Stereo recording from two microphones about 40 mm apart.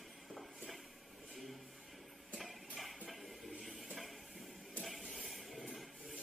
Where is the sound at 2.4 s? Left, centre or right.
Centre.